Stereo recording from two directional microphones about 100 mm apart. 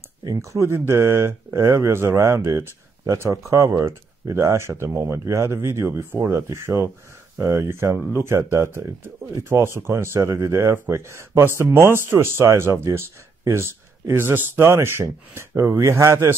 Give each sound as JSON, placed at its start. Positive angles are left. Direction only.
{"t": 0.2, "sound": "speech", "side_deg": -35}